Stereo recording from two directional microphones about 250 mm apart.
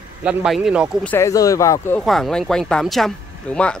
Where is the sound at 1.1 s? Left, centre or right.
Centre.